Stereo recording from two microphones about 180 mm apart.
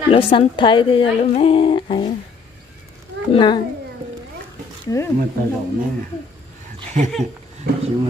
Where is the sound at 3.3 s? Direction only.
25° left (ahead or behind).